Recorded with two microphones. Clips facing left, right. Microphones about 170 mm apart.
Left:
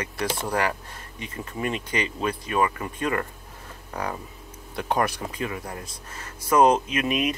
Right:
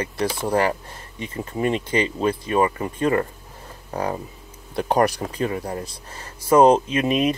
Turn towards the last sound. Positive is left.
turn(degrees=-30)  # may be behind; listen again after turning